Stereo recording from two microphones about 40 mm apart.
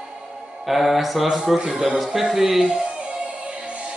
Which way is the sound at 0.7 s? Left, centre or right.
Centre.